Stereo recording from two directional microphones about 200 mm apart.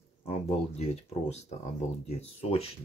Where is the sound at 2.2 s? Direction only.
30° left (ahead or behind).